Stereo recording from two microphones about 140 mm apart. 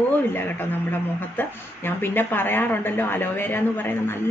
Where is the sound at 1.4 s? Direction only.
15° left (ahead or behind).